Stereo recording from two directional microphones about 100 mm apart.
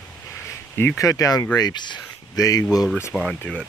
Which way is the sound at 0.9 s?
35° left (ahead or behind).